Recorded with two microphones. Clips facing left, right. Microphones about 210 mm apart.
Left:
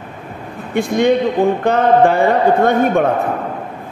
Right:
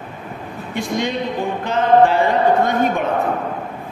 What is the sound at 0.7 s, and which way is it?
Speech, 55° left (ahead or behind).